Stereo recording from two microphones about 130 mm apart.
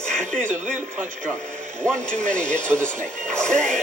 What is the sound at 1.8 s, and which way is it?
Speech, 10° left (ahead or behind).